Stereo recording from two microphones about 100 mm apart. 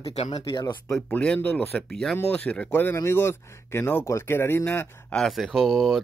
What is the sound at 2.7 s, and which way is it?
Speech, 20° left (ahead or behind).